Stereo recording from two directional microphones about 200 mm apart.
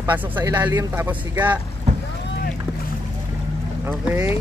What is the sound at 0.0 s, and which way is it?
Speech, 10° right (ahead or behind).